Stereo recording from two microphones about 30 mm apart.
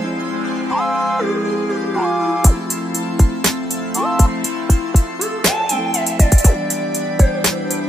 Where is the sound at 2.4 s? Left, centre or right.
Centre.